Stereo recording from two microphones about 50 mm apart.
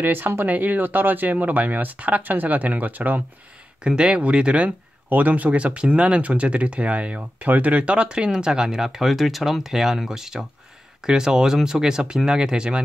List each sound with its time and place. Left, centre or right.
0.0 s speech: right
0.5 s speech: right
3.8 s speech: centre